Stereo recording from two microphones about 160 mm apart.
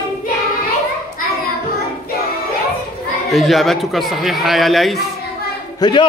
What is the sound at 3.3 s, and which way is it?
A man's voice, centre (ahead or behind).